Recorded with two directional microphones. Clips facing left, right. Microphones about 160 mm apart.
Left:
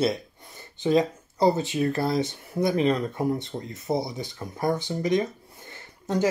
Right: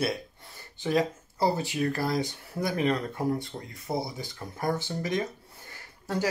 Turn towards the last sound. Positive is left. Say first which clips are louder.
# left 5 dB
turn(degrees=20)  # may be behind; listen again after turning